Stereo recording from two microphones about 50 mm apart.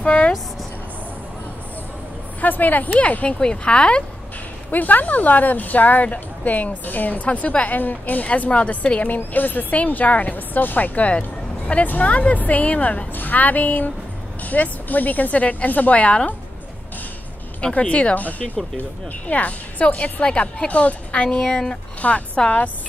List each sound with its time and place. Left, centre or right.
0.0 s speech: left
2.4 s a woman's voice: left
4.6 s speech: left
17.6 s a woman's voice: left
18.1 s a woman's voice: left; by 21.7 s centre
22.0 s a woman's voice: left